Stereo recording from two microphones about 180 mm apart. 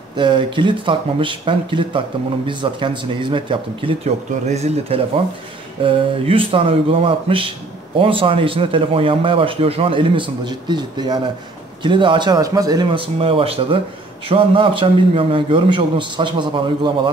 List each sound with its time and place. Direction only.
0.1 s speech: 25° right (ahead or behind)